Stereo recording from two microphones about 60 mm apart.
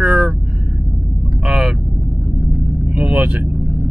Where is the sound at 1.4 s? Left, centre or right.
Centre.